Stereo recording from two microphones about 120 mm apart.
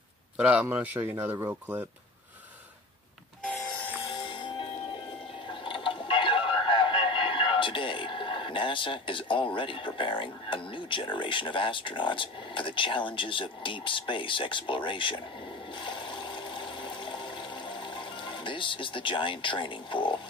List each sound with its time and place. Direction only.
0.4 s speech: 10° right (ahead or behind)
3.4 s train: 10° left (ahead or behind)
4.1 s music: 40° left (ahead or behind)
10.7 s speech: 45° left (ahead or behind)
15.7 s toilet flush: 45° left (ahead or behind)